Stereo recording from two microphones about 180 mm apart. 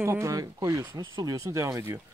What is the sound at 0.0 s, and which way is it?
Speech, 15° right (ahead or behind).